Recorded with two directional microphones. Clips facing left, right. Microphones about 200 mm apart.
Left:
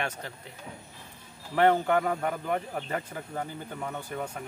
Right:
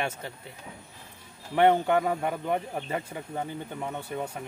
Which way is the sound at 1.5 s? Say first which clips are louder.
Right 1 dB; 20° right (ahead or behind).